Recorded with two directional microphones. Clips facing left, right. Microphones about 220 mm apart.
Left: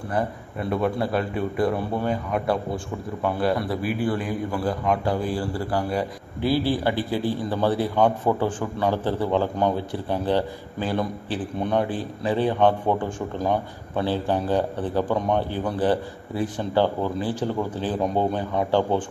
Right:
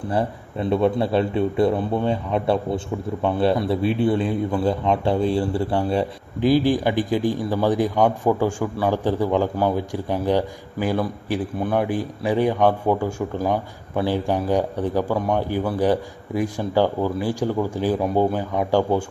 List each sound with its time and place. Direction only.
0.1 s a man's voice: 25° right (ahead or behind)
6.4 s a man's voice: 15° right (ahead or behind)